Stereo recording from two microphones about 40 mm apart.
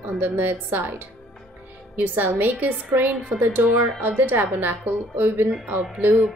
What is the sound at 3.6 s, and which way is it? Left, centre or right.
Speech, right.